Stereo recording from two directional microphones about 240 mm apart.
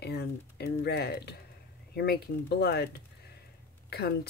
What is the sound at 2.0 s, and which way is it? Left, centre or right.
Speech, left.